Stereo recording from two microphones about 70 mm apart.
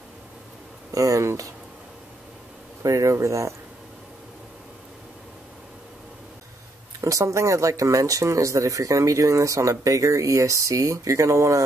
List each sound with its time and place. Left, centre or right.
0.9 s speech: right
2.8 s speech: right
7.0 s speech: right